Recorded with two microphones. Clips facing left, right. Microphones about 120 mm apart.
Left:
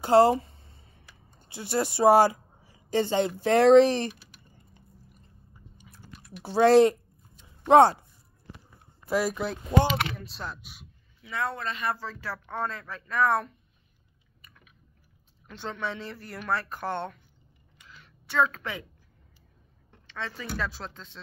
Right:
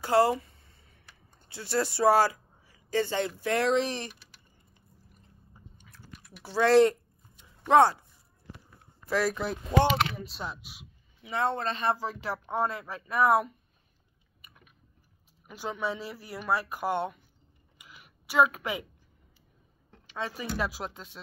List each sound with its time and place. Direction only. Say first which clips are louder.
0.0 s a sound: left 4 dB; 25° left (ahead or behind)
1.5 s speech: left 1 dB; 15° left (ahead or behind); by 4.1 s 35° left (ahead or behind)
6.4 s speech: left 3 dB; 20° left (ahead or behind)
9.0 s speech: left 1 dB; 10° left (ahead or behind)
11.2 s speech: right 3 dB; 25° right (ahead or behind)
12.0 s speech: right 3 dB; 15° right (ahead or behind)
15.4 s speech: right 1 dB; 10° right (ahead or behind)
17.7 s a sound: left 1 dB; 10° right (ahead or behind)
20.1 s speech: right 2 dB; 15° right (ahead or behind)